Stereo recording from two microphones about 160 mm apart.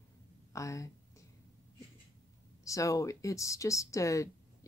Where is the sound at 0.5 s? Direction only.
20° left (ahead or behind).